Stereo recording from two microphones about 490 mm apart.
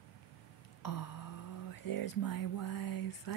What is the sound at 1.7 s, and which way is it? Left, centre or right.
Speech, left.